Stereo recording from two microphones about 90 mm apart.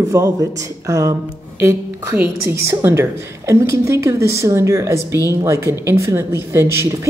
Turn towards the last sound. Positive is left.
turn(degrees=-30)  # may be behind; listen again after turning